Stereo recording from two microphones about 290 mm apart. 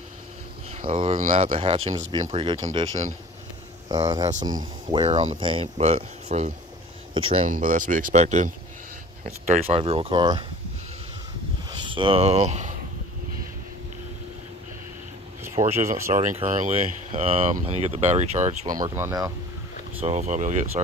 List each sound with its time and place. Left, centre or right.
0.8 s speech: right
4.3 s speech: right
11.8 s speech: centre
15.6 s speech: centre
20.0 s speech: right